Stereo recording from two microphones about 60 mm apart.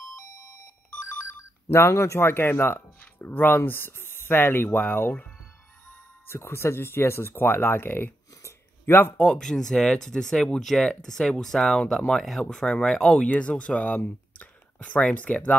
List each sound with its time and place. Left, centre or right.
1.7 s a man's voice: left
6.2 s speech: left
8.4 s a sound: left
9.2 s speech: centre